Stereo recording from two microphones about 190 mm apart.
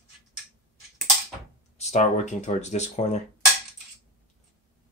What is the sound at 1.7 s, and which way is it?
Speech, 35° left (ahead or behind).